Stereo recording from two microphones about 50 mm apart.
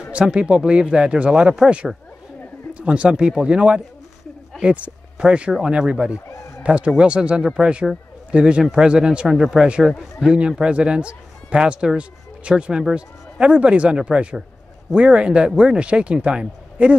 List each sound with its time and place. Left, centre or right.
0.1 s a man's voice: right
9.3 s speech: centre
10.2 s a man's voice: right